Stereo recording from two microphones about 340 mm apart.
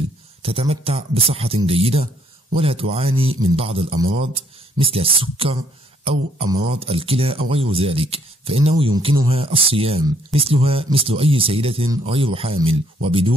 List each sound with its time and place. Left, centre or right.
0.4 s speech: centre